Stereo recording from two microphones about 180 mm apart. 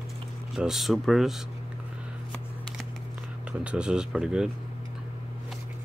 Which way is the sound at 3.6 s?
5° right (ahead or behind).